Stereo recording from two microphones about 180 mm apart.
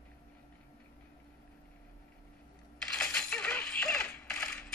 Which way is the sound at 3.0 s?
5° left (ahead or behind).